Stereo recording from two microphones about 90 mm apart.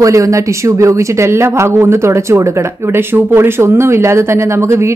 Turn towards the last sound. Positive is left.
turn(degrees=-30)  # may be behind; listen again after turning